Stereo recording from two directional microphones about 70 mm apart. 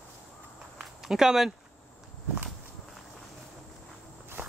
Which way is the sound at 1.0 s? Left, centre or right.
Centre.